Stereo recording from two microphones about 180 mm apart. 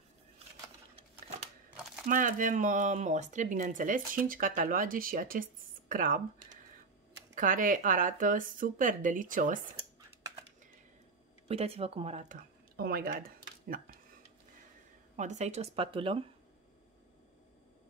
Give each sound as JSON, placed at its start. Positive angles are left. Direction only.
{"t": 2.0, "sound": "speech", "side_deg": -45}
{"t": 11.4, "sound": "speech", "side_deg": -35}
{"t": 15.1, "sound": "speech", "side_deg": -40}